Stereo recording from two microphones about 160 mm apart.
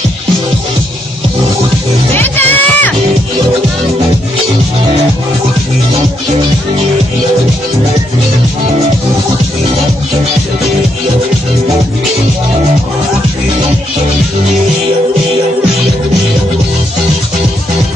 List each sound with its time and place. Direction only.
2.1 s music: 10° left (ahead or behind)